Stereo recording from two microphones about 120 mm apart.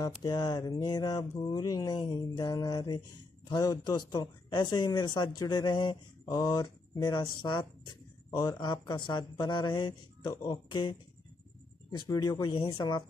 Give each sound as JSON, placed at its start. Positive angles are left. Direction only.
{"t": 0.0, "sound": "speech", "side_deg": 30}
{"t": 11.9, "sound": "speech", "side_deg": 35}